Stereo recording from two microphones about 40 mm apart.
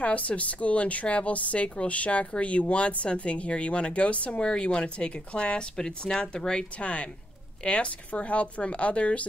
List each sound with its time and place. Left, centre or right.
0.0 s a woman's voice: left